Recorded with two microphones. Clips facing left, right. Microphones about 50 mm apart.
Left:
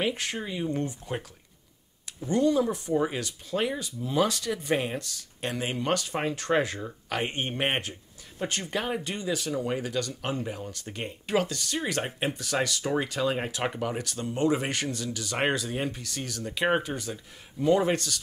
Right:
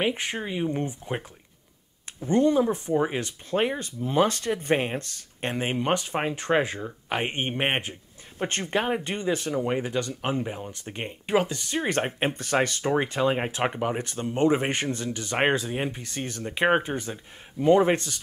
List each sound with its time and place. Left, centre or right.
0.0 s speech: right
2.2 s speech: right
8.4 s speech: right